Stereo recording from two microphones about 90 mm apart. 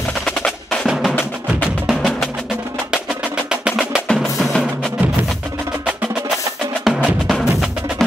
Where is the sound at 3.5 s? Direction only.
10° right (ahead or behind).